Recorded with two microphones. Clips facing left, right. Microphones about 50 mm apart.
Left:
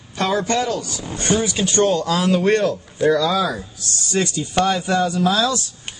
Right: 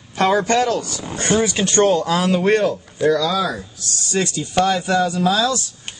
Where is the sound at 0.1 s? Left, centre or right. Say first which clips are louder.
Right 4 dB; right.